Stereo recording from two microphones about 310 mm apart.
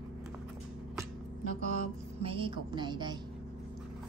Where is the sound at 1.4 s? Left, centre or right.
Right.